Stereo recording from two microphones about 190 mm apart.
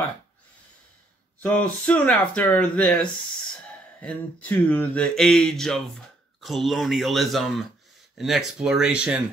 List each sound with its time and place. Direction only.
1.4 s speech: 10° left (ahead or behind)